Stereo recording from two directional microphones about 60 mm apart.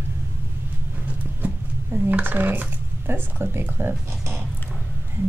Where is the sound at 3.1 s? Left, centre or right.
Right.